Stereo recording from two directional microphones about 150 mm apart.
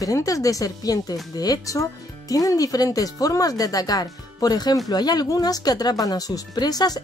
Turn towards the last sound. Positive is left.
turn(degrees=25)  # may be behind; listen again after turning